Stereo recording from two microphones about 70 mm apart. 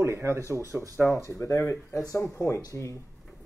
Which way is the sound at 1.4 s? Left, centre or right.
Left.